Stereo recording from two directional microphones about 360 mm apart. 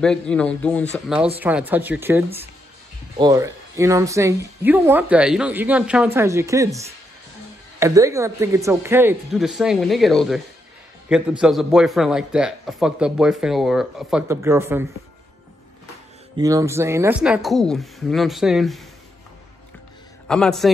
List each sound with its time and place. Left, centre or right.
0.0 s a man's voice: centre
16.3 s a man's voice: centre
20.2 s a man's voice: centre